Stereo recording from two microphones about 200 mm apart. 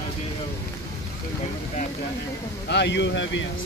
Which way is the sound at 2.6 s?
60° left (ahead or behind).